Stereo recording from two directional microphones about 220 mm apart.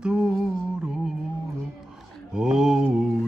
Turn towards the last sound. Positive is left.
turn(degrees=-5)  # may be behind; listen again after turning